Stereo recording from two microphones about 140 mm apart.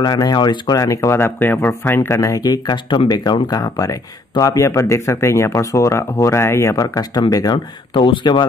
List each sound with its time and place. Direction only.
0.0 s speech: 30° left (ahead or behind)